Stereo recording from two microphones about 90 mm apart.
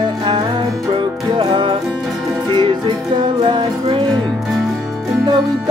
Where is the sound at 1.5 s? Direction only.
60° right (ahead or behind).